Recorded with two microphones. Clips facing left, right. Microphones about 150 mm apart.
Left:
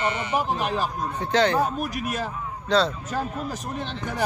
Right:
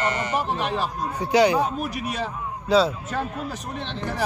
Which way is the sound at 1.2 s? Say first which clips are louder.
Right 3 dB; 10° right (ahead or behind).